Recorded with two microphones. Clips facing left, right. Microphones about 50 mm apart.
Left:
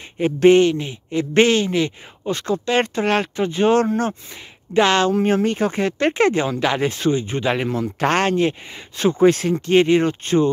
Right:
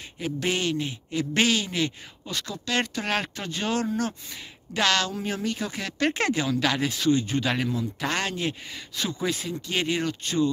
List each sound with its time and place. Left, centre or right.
0.2 s speech: left
3.7 s speech: left
4.3 s a woman's voice: left
5.1 s speech: left
7.7 s speech: left
9.3 s speech: left
9.7 s speech: left